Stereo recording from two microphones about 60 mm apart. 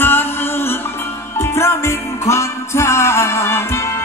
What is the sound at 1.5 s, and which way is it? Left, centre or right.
Music, left.